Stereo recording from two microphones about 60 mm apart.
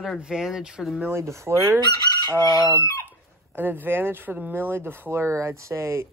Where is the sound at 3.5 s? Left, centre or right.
Right.